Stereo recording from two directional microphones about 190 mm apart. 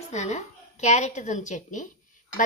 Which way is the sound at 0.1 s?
40° left (ahead or behind).